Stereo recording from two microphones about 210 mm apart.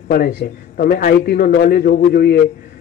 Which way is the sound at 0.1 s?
45° left (ahead or behind).